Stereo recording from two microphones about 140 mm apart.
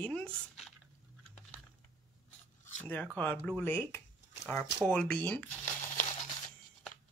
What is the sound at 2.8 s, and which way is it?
Speech, 10° left (ahead or behind).